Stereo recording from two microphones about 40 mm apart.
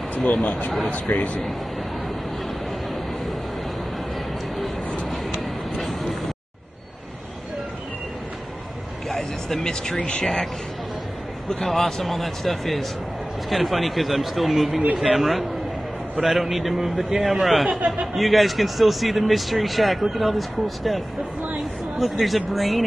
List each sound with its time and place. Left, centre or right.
0.1 s a man's voice: left
5.8 s vehicle: centre
9.1 s vehicle: centre
9.9 s speech: left
10.2 s a man's voice: centre